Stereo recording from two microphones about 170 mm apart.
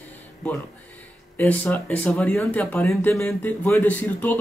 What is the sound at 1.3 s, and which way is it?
Speech, 10° left (ahead or behind).